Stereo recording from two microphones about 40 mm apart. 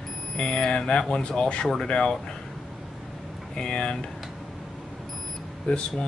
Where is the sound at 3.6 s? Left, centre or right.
Left.